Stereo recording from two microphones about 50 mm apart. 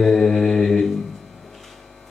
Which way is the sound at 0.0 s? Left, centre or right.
Centre.